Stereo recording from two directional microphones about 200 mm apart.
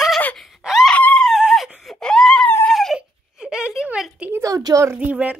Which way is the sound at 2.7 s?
Centre (ahead or behind).